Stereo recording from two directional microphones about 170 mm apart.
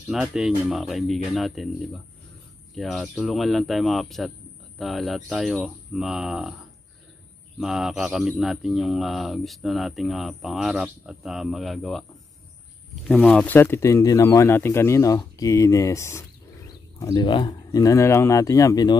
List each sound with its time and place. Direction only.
0.1 s speech: centre (ahead or behind)
2.7 s speech: centre (ahead or behind)
7.5 s speech: centre (ahead or behind)
13.1 s speech: 5° left (ahead or behind)